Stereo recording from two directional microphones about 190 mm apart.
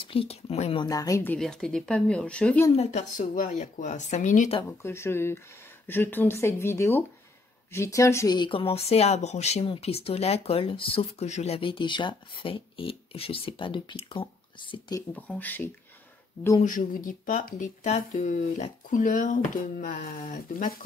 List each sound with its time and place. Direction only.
0.0 s speech: 30° left (ahead or behind)
0.8 s a woman's voice: 20° left (ahead or behind)
2.7 s speech: 35° left (ahead or behind)
4.6 s a woman's voice: 15° left (ahead or behind)
15.1 s a woman's voice: 10° left (ahead or behind)
16.6 s speech: 45° left (ahead or behind)